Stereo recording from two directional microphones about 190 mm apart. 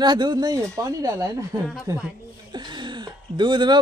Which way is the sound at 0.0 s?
25° right (ahead or behind).